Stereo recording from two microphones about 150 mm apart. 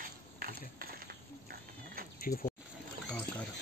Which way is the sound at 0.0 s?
70° right (ahead or behind).